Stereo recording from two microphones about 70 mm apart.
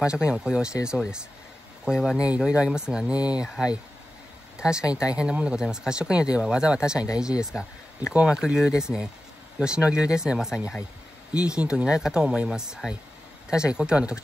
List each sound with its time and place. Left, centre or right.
0.0 s speech: centre
3.2 s speech: left
4.6 s speech: centre